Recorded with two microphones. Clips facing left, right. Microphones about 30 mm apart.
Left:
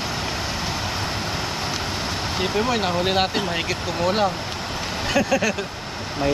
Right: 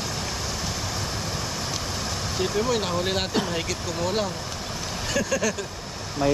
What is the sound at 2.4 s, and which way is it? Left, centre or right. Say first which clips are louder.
Speech: left 2 dB; left.